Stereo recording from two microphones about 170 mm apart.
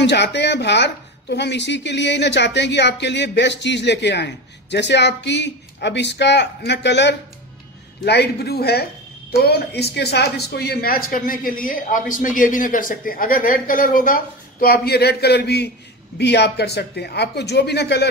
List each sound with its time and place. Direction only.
0.0 s speech: 85° left
8.0 s speech: 75° left (ahead or behind)